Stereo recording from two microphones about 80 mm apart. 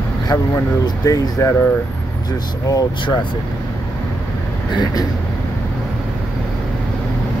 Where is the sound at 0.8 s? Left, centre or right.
Left.